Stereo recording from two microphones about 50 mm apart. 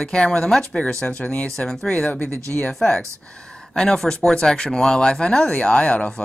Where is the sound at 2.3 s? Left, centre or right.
Right.